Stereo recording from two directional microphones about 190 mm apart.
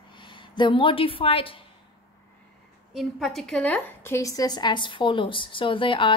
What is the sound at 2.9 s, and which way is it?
A woman's voice, centre (ahead or behind).